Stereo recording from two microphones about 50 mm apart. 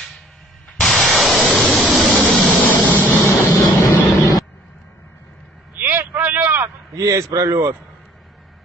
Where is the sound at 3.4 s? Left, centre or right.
Left.